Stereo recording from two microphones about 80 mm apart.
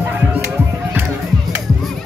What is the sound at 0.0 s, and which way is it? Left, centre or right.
Music, right.